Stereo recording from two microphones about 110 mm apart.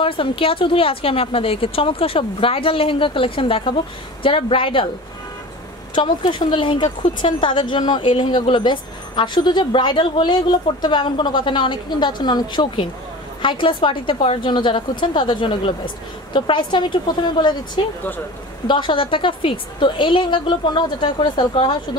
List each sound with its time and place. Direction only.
0.0 s a woman's voice: 55° left (ahead or behind)
5.9 s a woman's voice: 45° left (ahead or behind)